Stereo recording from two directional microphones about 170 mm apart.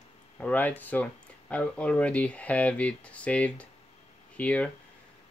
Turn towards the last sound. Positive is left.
turn(degrees=10)  # may be behind; listen again after turning